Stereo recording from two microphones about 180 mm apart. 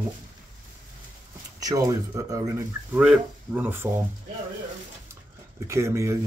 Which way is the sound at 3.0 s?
5° right (ahead or behind).